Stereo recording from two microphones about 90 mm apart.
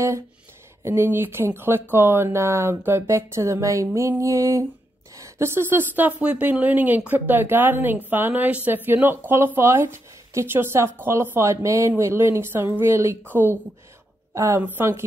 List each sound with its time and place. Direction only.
0.8 s speech: 25° right (ahead or behind)
4.2 s a sound: 35° right (ahead or behind)
5.1 s speech: 30° right (ahead or behind)
14.3 s a woman's voice: 35° right (ahead or behind)